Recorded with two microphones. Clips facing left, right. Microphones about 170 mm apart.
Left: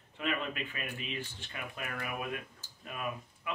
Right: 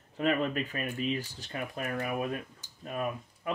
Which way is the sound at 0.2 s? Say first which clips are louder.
Right 7 dB; 40° right (ahead or behind).